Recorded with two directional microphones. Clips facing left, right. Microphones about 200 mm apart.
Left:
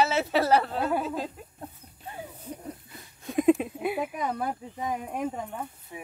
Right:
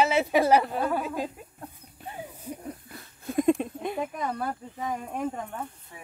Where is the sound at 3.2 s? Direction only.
Centre (ahead or behind).